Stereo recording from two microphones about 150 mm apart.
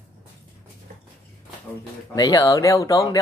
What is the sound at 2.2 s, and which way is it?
Speech, 25° left (ahead or behind).